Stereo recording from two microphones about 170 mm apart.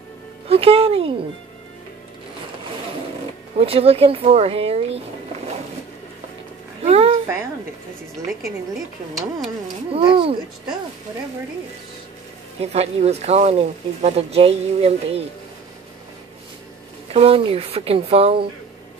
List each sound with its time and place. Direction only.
0.5 s speech: 35° right (ahead or behind)
3.5 s speech: 35° right (ahead or behind)
6.8 s a sound: 35° right (ahead or behind)
9.9 s speech: 30° right (ahead or behind)
12.5 s speech: 40° right (ahead or behind)
17.1 s speech: 35° right (ahead or behind)